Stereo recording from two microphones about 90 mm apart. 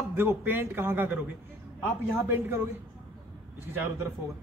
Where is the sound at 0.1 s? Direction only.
25° right (ahead or behind).